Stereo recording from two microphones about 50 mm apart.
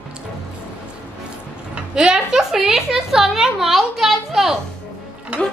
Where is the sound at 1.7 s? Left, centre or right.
Centre.